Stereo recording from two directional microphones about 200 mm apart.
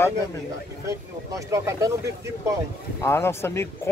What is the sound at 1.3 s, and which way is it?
Speech, 15° right (ahead or behind).